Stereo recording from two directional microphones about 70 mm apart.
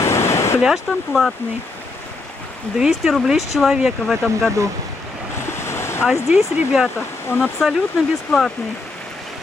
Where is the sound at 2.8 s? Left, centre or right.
Centre.